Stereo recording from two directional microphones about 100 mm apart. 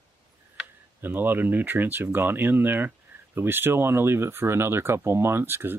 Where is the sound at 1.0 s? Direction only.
20° right (ahead or behind).